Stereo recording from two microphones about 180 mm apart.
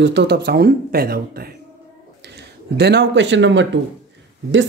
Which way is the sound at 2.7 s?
70° right (ahead or behind).